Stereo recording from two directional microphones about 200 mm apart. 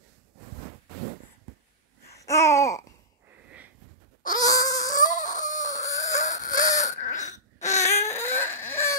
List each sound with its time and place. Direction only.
2.1 s babbling: 15° left (ahead or behind)
4.2 s wail: 20° left (ahead or behind)
5.2 s chicken: 20° left (ahead or behind)
6.8 s baby cry: 35° left (ahead or behind)
7.8 s baby cry: 15° left (ahead or behind)